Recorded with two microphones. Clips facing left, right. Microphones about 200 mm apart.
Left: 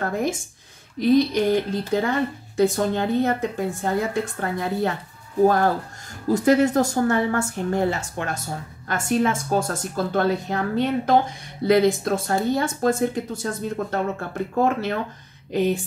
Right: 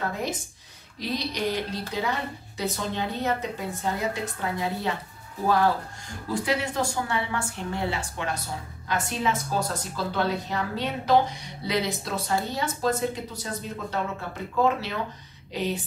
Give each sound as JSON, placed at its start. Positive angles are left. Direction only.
{"t": 0.0, "sound": "speech", "side_deg": 50}